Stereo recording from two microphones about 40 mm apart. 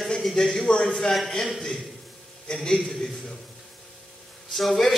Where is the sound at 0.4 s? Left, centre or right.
Centre.